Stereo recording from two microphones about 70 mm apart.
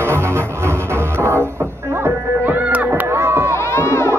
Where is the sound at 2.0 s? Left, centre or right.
Right.